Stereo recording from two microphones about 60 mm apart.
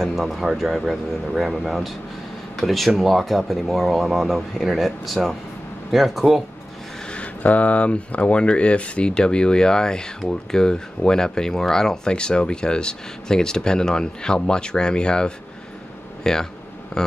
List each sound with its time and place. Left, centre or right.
0.0 s speech: centre
7.1 s speech: left